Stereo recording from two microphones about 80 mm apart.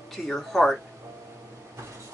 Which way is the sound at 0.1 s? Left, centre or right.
Centre.